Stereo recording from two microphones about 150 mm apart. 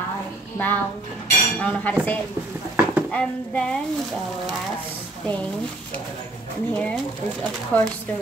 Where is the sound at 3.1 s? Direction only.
5° left (ahead or behind).